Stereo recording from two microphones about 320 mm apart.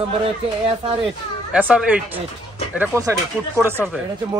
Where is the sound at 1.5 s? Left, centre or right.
Centre.